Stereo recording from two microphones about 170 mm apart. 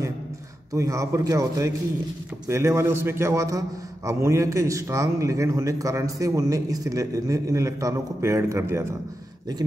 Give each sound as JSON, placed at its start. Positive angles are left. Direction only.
{"t": 0.7, "sound": "a man's voice", "side_deg": -20}